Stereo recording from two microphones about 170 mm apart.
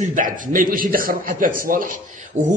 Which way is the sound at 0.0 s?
50° right (ahead or behind).